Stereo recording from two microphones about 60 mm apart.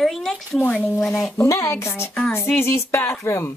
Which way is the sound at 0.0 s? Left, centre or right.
Centre.